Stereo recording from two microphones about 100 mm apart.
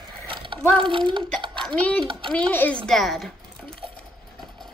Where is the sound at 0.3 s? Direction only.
60° right (ahead or behind).